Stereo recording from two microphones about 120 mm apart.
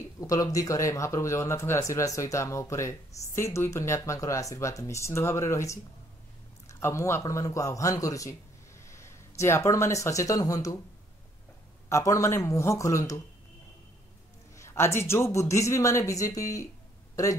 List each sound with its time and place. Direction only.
0.0 s a man's voice: 30° left (ahead or behind)
11.9 s speech: 25° left (ahead or behind)
14.6 s speech: 20° left (ahead or behind)